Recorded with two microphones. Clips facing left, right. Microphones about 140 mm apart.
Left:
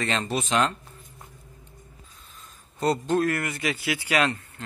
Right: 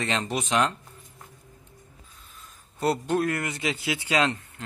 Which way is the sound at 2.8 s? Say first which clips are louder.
Left 1 dB; 10° right (ahead or behind).